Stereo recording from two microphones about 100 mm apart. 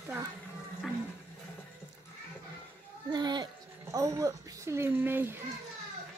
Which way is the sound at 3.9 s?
35° right (ahead or behind).